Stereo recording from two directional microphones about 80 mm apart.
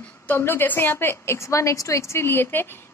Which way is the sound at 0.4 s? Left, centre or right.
Left.